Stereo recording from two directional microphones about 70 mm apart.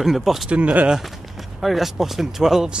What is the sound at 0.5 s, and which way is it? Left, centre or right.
Speech, centre.